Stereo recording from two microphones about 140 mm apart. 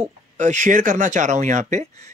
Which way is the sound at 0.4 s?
60° right (ahead or behind).